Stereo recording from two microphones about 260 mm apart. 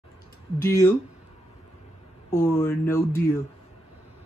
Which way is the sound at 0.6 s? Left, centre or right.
Centre.